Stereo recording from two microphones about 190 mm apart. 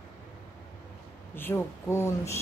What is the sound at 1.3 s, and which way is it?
Speech, 10° left (ahead or behind).